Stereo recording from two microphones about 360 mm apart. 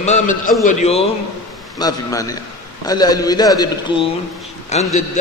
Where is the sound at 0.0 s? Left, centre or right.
Centre.